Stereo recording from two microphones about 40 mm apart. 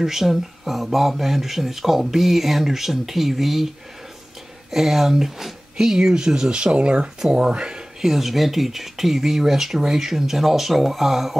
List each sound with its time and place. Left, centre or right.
0.0 s speech: centre
8.0 s speech: centre